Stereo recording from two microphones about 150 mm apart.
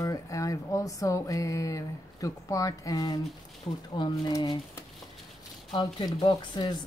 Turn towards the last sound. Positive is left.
turn(degrees=30)  # may be behind; listen again after turning